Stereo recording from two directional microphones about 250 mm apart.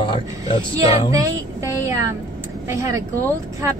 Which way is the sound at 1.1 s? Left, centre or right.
Centre.